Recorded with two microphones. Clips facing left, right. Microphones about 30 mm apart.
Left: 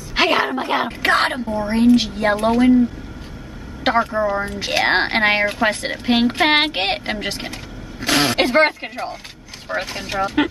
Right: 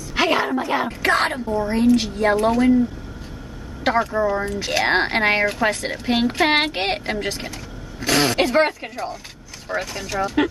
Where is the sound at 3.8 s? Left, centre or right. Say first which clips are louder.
Left 1 dB; left.